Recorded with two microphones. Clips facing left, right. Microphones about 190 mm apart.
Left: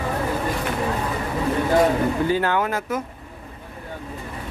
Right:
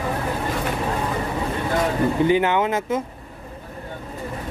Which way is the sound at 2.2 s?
20° right (ahead or behind).